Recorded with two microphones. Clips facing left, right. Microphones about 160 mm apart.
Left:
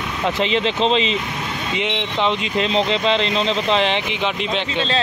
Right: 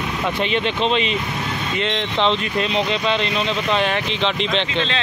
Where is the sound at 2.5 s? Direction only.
30° left (ahead or behind).